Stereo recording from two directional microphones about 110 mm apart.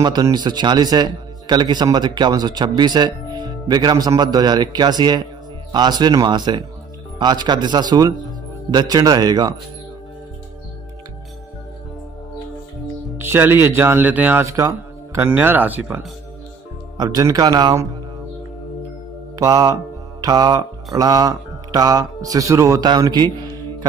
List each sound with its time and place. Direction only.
0.0 s speech: 40° right (ahead or behind)
13.2 s speech: 20° right (ahead or behind)
14.4 s a man's voice: 30° right (ahead or behind)
16.9 s speech: 40° right (ahead or behind)
19.3 s mantra: 35° right (ahead or behind)
22.8 s speech: 35° right (ahead or behind)